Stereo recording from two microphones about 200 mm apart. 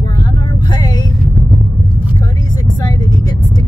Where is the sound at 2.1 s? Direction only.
20° left (ahead or behind).